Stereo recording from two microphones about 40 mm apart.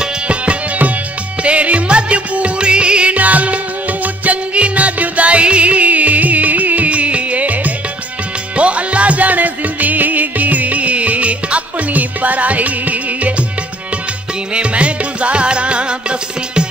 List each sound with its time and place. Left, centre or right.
1.4 s music: right
3.2 s music: right
14.5 s music: right